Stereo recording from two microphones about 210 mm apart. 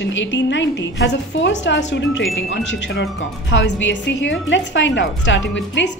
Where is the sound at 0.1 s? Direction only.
60° left (ahead or behind).